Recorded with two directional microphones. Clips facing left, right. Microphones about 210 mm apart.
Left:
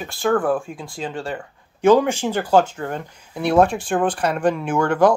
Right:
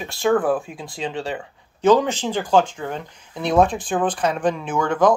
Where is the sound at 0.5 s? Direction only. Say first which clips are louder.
Even; centre (ahead or behind).